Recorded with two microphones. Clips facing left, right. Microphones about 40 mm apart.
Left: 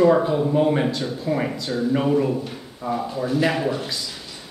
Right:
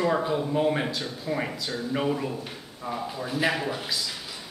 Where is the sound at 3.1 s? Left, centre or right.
Centre.